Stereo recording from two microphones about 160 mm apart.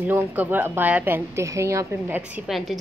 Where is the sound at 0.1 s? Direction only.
10° right (ahead or behind).